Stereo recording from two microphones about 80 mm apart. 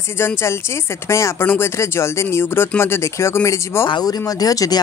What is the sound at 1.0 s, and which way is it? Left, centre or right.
Speech, left.